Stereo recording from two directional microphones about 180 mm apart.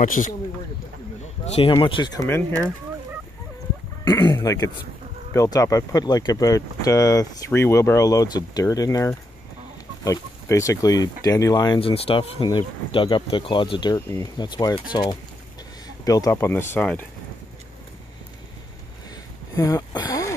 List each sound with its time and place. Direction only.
0.0 s speech: 45° left (ahead or behind)
1.4 s speech: 30° left (ahead or behind); by 2.7 s 15° left (ahead or behind)
4.0 s speech: 20° left (ahead or behind)
19.5 s a sound: 20° left (ahead or behind)